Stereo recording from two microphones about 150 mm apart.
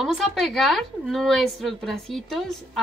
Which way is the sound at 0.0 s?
Centre (ahead or behind).